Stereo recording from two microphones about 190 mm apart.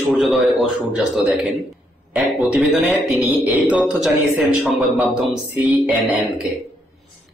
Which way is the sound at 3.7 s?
5° right (ahead or behind).